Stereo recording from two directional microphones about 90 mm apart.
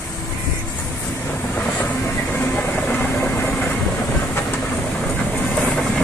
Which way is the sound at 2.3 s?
15° left (ahead or behind).